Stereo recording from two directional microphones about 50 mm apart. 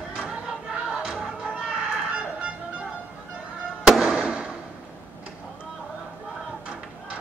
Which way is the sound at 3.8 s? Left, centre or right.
Centre.